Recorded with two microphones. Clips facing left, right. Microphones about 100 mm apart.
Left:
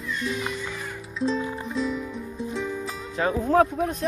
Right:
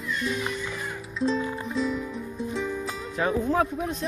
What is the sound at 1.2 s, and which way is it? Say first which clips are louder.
Music: even; centre (ahead or behind).